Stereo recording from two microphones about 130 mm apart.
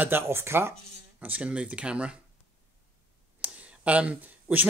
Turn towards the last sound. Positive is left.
turn(degrees=-15)  # may be behind; listen again after turning